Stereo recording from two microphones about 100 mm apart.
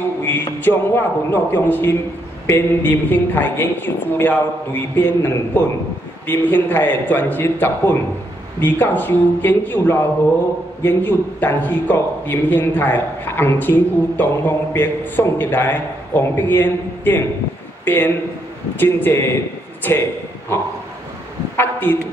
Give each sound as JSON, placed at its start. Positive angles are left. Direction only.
{"t": 0.6, "sound": "a man's voice", "side_deg": 20}
{"t": 21.5, "sound": "a man's voice", "side_deg": 20}